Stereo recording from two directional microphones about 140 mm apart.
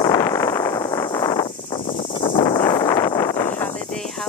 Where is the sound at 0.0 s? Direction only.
20° left (ahead or behind).